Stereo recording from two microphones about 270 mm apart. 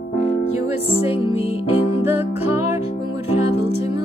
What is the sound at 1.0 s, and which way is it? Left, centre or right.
Music, left.